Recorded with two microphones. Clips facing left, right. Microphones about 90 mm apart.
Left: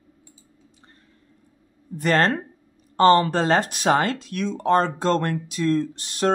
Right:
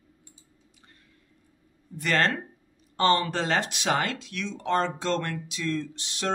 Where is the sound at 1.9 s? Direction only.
40° left (ahead or behind).